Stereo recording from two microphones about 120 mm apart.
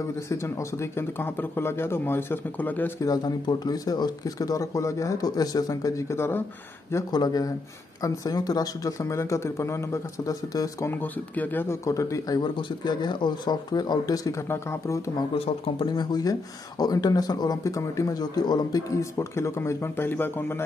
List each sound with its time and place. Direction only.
0.3 s speech: 25° left (ahead or behind)
3.1 s speech: 35° left (ahead or behind)
7.1 s speech: 35° left (ahead or behind)
10.9 s speech: 15° left (ahead or behind)
12.4 s speech: 40° left (ahead or behind)
15.3 s speech: 50° left (ahead or behind)
15.9 s speech: 35° left (ahead or behind); by 20.6 s 20° left (ahead or behind)